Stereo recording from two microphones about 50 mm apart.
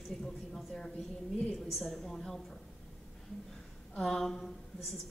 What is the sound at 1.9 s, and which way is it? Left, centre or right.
Speech, centre.